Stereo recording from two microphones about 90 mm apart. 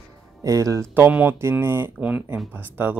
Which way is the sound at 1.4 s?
25° right (ahead or behind).